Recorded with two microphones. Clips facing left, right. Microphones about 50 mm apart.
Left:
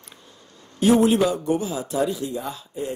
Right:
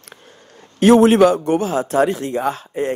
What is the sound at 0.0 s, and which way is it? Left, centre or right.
A man's voice, right.